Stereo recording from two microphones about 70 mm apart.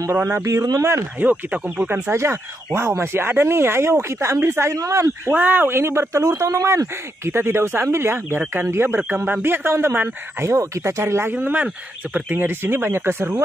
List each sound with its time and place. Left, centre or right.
0.1 s speech: right
0.4 s speech: right
1.2 s speech: right
2.1 s speech: right
5.3 s speech: right
6.2 s speech: right
9.1 s speech: right
9.4 s speech: right
11.3 s speech: right